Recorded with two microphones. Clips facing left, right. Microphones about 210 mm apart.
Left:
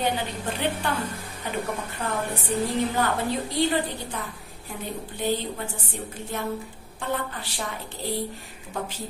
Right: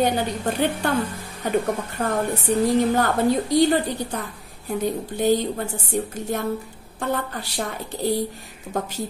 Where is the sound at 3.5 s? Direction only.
40° right (ahead or behind).